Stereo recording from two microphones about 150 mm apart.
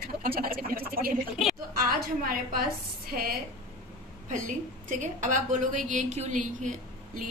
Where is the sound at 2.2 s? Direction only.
70° right (ahead or behind).